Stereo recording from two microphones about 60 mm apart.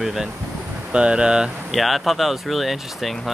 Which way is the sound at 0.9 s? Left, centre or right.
Centre.